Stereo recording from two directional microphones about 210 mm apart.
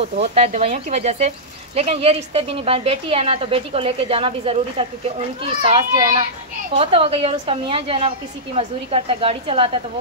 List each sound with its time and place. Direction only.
0.0 s a woman's voice: 30° right (ahead or behind)